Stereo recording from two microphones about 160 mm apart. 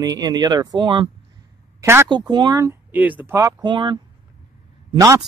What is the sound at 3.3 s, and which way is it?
Speech, 25° right (ahead or behind).